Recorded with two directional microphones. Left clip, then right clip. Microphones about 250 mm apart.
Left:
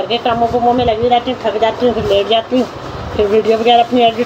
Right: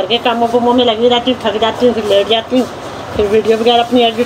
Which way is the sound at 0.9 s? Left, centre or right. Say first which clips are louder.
Right 2 dB; centre.